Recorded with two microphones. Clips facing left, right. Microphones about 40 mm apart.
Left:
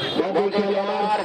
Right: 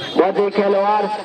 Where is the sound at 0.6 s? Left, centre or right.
Centre.